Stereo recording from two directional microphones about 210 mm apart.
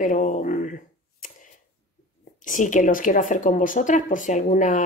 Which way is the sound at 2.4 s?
40° left (ahead or behind).